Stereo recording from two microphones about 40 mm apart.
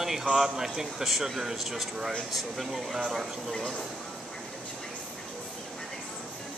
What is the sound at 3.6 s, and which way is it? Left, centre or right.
Speech, left.